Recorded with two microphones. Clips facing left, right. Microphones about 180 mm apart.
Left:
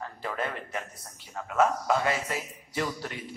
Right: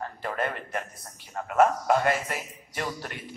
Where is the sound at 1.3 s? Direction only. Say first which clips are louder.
Right 3 dB; 50° right (ahead or behind).